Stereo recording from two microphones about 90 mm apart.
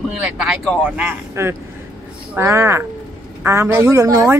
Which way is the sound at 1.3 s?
30° right (ahead or behind).